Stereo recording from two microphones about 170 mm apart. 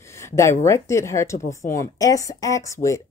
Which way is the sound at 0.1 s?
15° left (ahead or behind).